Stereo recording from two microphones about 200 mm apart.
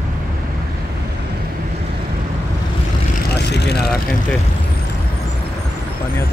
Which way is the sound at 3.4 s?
55° left (ahead or behind).